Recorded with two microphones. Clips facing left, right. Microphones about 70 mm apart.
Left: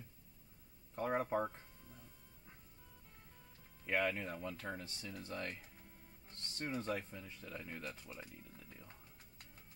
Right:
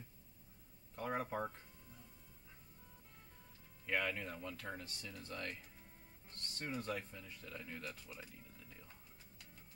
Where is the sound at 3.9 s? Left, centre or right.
Centre.